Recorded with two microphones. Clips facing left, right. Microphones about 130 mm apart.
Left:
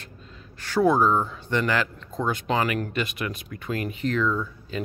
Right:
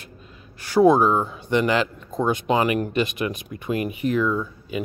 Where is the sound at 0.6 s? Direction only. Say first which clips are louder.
Right 5 dB; 15° right (ahead or behind).